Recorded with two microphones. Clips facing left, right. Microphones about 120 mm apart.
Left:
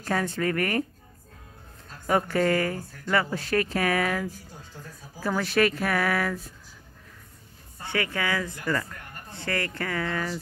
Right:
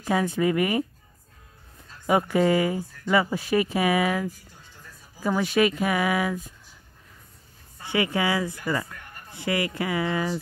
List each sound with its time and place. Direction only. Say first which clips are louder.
0.0 s speech: right 4 dB; 10° right (ahead or behind)
2.0 s speech: right 2 dB; 10° right (ahead or behind)
7.8 s speech: right 4 dB; 15° right (ahead or behind)